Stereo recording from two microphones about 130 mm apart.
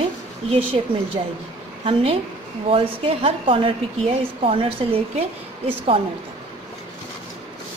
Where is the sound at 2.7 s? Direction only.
45° right (ahead or behind).